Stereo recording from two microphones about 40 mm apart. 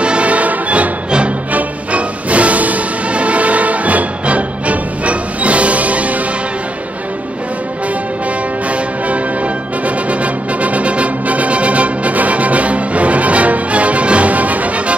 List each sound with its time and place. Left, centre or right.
0.0 s music: right
8.6 s music: right